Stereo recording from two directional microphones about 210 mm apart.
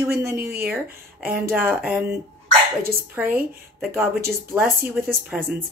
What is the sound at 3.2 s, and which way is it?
A woman's voice, 5° right (ahead or behind).